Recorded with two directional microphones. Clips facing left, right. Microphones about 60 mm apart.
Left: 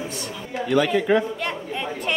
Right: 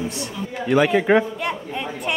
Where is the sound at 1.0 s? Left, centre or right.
Right.